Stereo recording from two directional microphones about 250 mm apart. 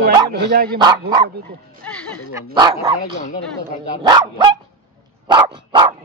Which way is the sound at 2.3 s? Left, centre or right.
Centre.